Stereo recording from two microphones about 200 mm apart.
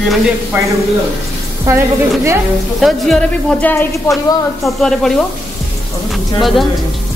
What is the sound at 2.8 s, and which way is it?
A woman's voice, centre (ahead or behind).